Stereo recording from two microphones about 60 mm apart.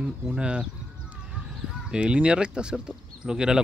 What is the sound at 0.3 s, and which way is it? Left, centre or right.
Speech, centre.